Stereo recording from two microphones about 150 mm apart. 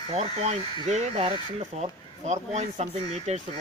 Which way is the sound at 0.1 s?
45° right (ahead or behind).